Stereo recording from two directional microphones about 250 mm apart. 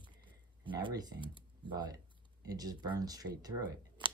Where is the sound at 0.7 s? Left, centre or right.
Centre.